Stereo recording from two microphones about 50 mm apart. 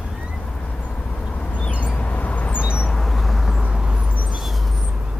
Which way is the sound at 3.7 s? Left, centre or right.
Centre.